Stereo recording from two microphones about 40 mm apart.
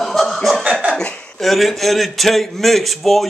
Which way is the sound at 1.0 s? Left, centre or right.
Left.